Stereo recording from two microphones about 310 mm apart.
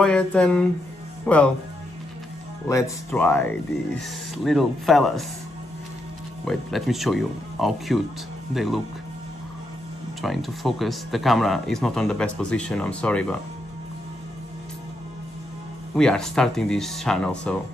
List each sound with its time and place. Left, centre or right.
0.0 s speech: centre
2.7 s speech: centre
4.5 s speech: centre
6.4 s speech: centre
10.2 s speech: centre
16.0 s speech: centre